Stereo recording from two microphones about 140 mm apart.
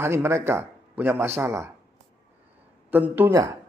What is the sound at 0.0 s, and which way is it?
Speech, 15° right (ahead or behind).